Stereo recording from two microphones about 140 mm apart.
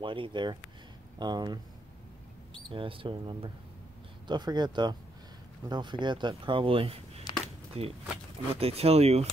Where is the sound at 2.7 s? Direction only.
40° right (ahead or behind).